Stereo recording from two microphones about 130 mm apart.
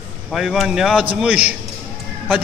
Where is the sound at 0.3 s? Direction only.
Centre (ahead or behind).